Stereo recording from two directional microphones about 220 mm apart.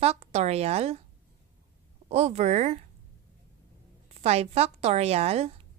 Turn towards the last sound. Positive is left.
turn(degrees=-30)  # may be behind; listen again after turning